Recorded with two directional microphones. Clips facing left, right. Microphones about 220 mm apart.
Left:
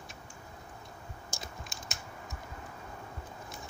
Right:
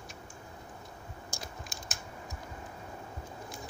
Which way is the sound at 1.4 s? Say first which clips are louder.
Right 1 dB; centre (ahead or behind).